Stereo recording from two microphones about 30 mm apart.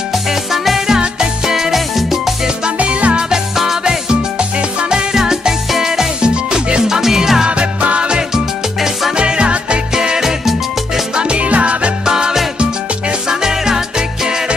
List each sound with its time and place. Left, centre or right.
0.3 s music: centre
2.8 s music: right
3.8 s music: right
5.1 s music: centre
7.8 s music: right
9.1 s music: right
11.1 s music: right
12.1 s music: right